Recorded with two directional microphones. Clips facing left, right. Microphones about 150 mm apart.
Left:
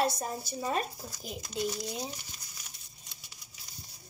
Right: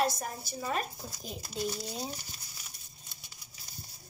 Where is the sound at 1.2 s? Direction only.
Centre (ahead or behind).